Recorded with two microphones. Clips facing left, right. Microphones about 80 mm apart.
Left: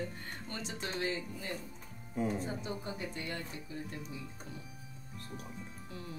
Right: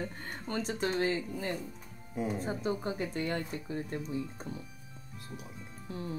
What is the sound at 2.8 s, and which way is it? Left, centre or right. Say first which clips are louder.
Speech: right 7 dB; right.